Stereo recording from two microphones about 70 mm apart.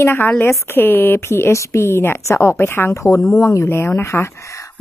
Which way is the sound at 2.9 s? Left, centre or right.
Left.